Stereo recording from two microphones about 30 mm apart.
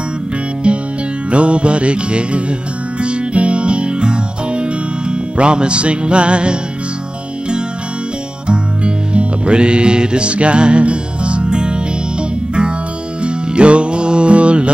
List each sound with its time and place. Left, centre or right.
0.7 s music: right
8.5 s music: right